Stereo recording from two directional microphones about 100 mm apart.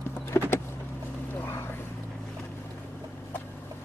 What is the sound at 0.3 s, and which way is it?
Power windows, 30° left (ahead or behind).